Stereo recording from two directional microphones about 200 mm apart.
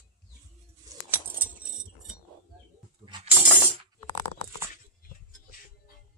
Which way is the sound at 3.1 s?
20° right (ahead or behind).